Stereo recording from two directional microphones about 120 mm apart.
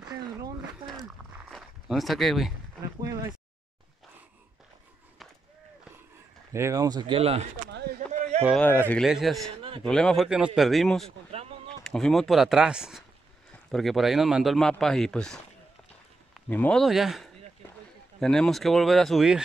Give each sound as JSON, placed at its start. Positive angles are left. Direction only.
{"t": 1.5, "sound": "speech", "side_deg": 0}
{"t": 3.0, "sound": "a sound", "side_deg": -30}
{"t": 6.5, "sound": "speech", "side_deg": -25}
{"t": 7.2, "sound": "speech", "side_deg": -55}
{"t": 8.5, "sound": "speech", "side_deg": 15}
{"t": 9.0, "sound": "speech", "side_deg": 0}
{"t": 16.4, "sound": "speech", "side_deg": 10}
{"t": 16.8, "sound": "speech", "side_deg": 0}